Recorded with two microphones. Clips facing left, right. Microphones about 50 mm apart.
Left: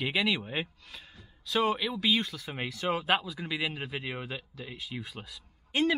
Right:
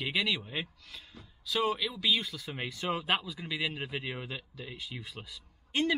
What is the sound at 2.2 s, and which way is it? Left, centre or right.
Speech, centre.